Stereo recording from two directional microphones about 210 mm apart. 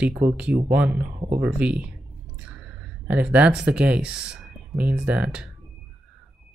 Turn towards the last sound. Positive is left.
turn(degrees=-5)  # may be behind; listen again after turning